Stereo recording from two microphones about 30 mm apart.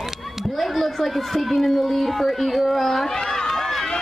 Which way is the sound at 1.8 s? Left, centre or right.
Centre.